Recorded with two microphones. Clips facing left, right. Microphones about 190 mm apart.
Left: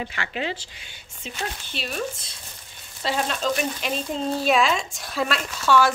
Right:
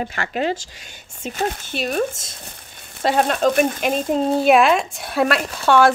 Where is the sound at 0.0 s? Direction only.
45° right (ahead or behind).